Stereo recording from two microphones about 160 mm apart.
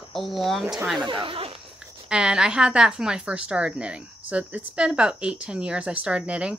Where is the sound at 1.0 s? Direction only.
30° right (ahead or behind).